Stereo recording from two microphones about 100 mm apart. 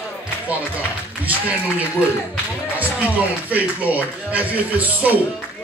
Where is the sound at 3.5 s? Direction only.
15° right (ahead or behind).